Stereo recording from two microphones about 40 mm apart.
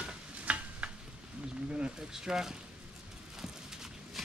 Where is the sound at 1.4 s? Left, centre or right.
Right.